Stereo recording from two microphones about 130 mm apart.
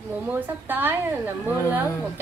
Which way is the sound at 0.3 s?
15° right (ahead or behind).